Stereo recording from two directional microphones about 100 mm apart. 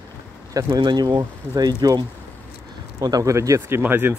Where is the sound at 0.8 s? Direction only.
45° right (ahead or behind); by 4.1 s 20° right (ahead or behind).